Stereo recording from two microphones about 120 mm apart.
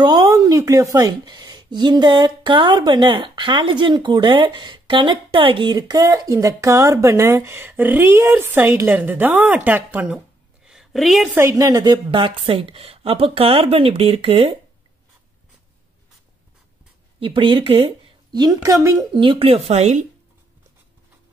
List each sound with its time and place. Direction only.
0.0 s a woman's voice: 35° right (ahead or behind); by 11.3 s centre (ahead or behind)
11.5 s a woman's voice: 30° right (ahead or behind); by 14.5 s 55° right (ahead or behind)
17.2 s speech: 45° right (ahead or behind)
18.3 s speech: 35° right (ahead or behind)
19.1 s speech: 45° right (ahead or behind); by 20.1 s 70° right (ahead or behind)